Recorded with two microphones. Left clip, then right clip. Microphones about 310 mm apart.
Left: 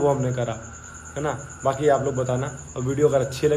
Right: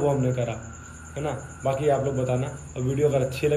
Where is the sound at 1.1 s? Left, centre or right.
Left.